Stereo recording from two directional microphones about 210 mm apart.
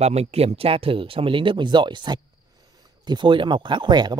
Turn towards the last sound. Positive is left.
turn(degrees=-20)  # may be behind; listen again after turning